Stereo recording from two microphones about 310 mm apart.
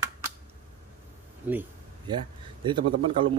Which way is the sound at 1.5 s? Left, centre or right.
Centre.